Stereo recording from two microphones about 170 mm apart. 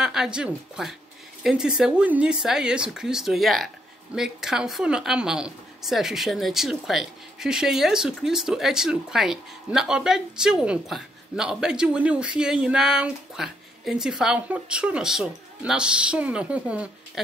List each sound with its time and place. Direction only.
0.0 s speech: 5° right (ahead or behind)